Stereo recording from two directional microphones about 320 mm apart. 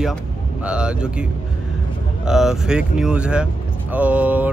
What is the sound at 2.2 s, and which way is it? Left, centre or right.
Speech, centre.